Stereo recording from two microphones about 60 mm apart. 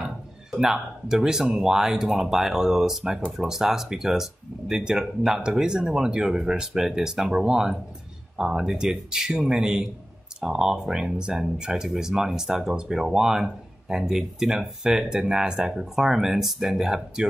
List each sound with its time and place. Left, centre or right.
0.0 s speech: centre